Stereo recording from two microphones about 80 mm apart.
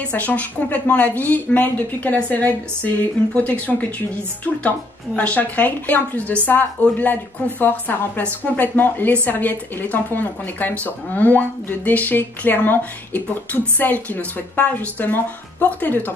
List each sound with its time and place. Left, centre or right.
0.1 s speech: left